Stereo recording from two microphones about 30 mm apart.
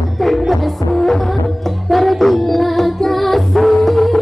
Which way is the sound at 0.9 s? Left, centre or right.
Centre.